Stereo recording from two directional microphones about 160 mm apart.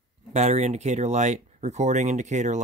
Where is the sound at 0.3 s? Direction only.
45° right (ahead or behind).